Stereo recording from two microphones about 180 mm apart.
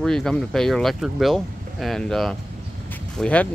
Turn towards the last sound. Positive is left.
turn(degrees=5)  # may be behind; listen again after turning